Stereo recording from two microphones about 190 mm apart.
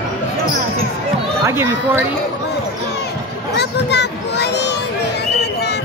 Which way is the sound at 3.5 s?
60° left (ahead or behind).